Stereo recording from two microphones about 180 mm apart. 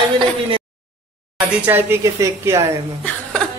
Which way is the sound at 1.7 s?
10° right (ahead or behind).